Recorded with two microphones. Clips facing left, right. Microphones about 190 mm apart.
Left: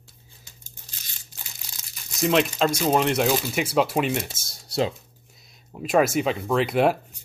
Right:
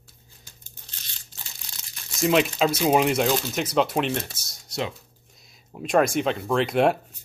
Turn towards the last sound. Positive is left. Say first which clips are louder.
# even
turn(degrees=0)  # may be behind; listen again after turning